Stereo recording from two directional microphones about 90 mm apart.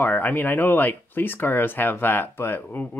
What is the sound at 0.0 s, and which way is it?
Speech, 20° left (ahead or behind).